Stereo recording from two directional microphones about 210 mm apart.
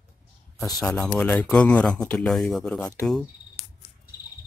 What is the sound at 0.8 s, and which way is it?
Speech, 5° left (ahead or behind).